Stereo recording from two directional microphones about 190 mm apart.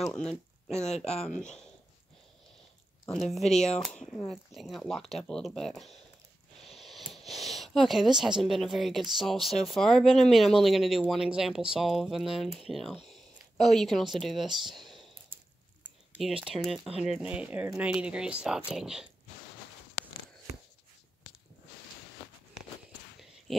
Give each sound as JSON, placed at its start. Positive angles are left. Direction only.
{"t": 0.9, "sound": "speech", "side_deg": 35}
{"t": 3.1, "sound": "speech", "side_deg": 0}
{"t": 6.6, "sound": "a sound", "side_deg": 0}
{"t": 7.1, "sound": "speech", "side_deg": 0}
{"t": 14.7, "sound": "clicking", "side_deg": 0}
{"t": 15.8, "sound": "speech", "side_deg": -5}